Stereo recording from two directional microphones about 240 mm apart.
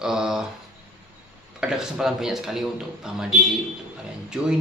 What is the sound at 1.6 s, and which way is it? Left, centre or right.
Speech, centre.